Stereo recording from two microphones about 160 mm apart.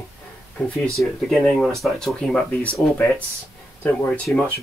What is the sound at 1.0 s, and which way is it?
Speech, centre (ahead or behind).